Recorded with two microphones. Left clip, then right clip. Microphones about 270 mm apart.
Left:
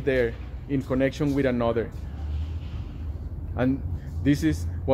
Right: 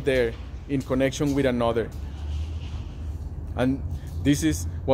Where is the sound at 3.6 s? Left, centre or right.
Centre.